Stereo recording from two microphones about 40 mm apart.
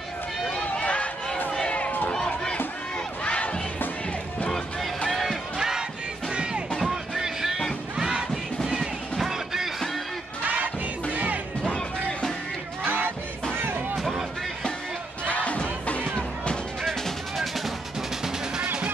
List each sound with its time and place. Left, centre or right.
0.7 s run: left
1.8 s run: left
2.1 s run: centre
3.3 s crowd: left
5.6 s battle cry: centre
6.3 s music: right
6.9 s music: centre
9.3 s music: centre
12.8 s music: right
13.9 s music: centre
15.3 s music: left